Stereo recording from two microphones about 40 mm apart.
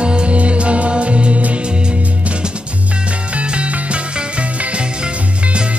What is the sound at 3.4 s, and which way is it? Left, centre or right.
Music, right.